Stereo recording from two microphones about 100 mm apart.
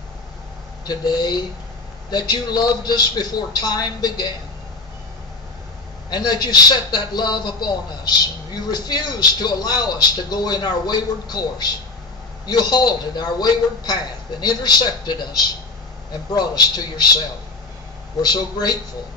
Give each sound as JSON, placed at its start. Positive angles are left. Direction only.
{"t": 0.8, "sound": "speech", "side_deg": 45}
{"t": 6.0, "sound": "speech", "side_deg": 45}
{"t": 18.2, "sound": "speech", "side_deg": 45}